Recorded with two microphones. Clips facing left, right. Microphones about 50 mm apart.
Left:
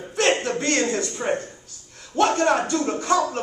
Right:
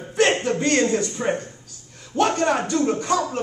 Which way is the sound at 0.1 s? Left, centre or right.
Centre.